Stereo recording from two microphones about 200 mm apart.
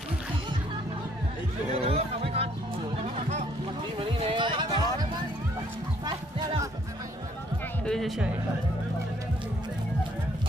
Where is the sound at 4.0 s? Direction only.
25° right (ahead or behind).